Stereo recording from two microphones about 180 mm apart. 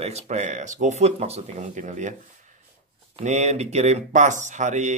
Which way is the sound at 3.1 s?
40° right (ahead or behind).